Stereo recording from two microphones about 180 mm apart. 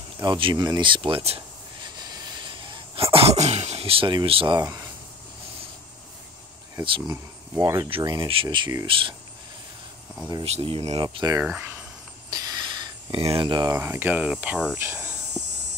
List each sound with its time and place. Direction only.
0.2 s speech: 25° right (ahead or behind)
2.0 s sneeze: 20° right (ahead or behind)
6.8 s speech: 30° right (ahead or behind)
7.5 s speech: 15° right (ahead or behind)
10.4 s speech: 35° right (ahead or behind)
11.4 s speech: 10° right (ahead or behind)
13.1 s speech: 30° right (ahead or behind); by 14.6 s 5° right (ahead or behind)
14.8 s cricket: 15° right (ahead or behind)